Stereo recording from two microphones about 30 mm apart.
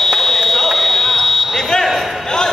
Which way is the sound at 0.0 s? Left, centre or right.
Centre.